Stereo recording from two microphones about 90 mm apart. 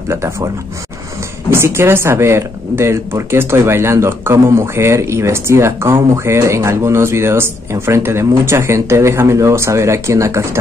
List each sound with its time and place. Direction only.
1.5 s speech: 25° right (ahead or behind)